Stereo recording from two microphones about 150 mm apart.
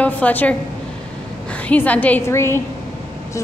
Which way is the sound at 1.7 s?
10° left (ahead or behind).